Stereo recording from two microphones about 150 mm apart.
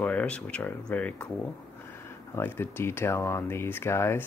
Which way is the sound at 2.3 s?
15° left (ahead or behind).